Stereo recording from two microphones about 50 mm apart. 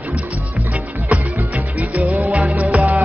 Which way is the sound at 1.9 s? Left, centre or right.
Right.